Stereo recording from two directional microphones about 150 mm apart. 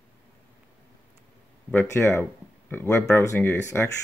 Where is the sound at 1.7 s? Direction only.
15° left (ahead or behind).